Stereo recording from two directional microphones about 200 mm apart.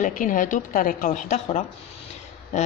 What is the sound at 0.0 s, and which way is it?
A woman's voice, 40° left (ahead or behind).